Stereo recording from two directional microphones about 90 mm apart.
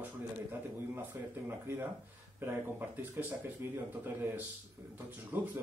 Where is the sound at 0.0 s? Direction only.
25° right (ahead or behind).